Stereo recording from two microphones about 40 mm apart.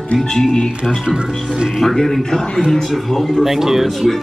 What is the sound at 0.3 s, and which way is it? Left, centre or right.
Speech, centre.